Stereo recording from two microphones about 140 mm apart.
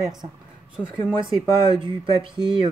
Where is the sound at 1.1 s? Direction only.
35° right (ahead or behind).